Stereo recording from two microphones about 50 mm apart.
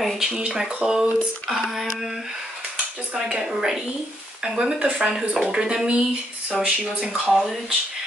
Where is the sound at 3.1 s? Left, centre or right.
Centre.